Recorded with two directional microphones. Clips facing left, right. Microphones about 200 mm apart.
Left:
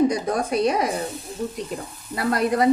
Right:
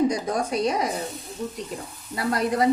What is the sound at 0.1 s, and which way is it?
Speech, 60° left (ahead or behind).